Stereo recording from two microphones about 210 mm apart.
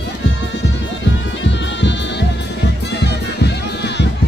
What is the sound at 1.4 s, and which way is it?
Music, 60° left (ahead or behind).